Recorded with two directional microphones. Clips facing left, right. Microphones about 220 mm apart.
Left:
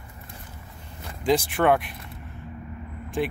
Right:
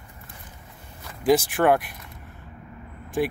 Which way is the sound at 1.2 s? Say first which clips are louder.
Right 2 dB; 5° right (ahead or behind).